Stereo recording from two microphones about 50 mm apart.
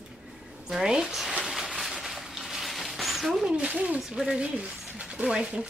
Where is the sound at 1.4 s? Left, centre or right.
Centre.